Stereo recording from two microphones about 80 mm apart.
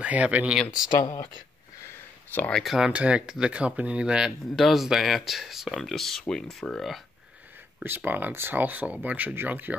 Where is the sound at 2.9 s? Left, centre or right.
Centre.